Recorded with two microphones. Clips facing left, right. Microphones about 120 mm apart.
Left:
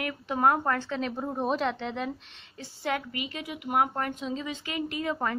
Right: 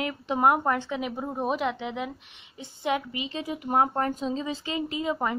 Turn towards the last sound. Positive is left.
turn(degrees=-20)  # may be behind; listen again after turning